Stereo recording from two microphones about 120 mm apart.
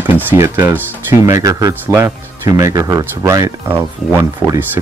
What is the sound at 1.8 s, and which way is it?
Speech, 20° right (ahead or behind).